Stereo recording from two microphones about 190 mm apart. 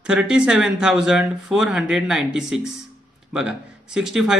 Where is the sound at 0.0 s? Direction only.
5° right (ahead or behind).